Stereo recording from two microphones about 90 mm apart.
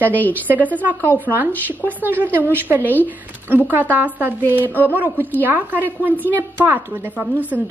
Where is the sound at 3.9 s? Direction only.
20° right (ahead or behind).